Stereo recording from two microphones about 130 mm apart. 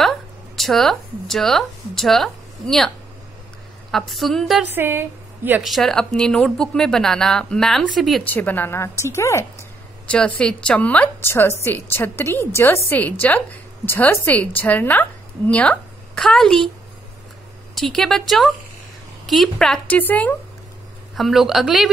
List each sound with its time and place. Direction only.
0.6 s speech: centre (ahead or behind)
3.9 s speech: centre (ahead or behind)
4.6 s a woman's voice: 15° right (ahead or behind)
5.6 s speech: centre (ahead or behind)
8.2 s a woman's voice: 15° left (ahead or behind)
10.0 s a woman's voice: 10° left (ahead or behind)
17.7 s a woman's voice: centre (ahead or behind)
21.1 s speech: centre (ahead or behind)